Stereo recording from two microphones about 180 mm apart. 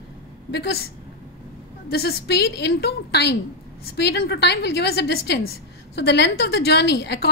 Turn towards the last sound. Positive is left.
turn(degrees=70)  # may be behind; listen again after turning